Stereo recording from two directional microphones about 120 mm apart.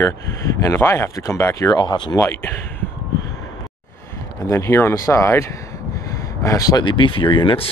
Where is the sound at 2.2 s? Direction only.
20° left (ahead or behind).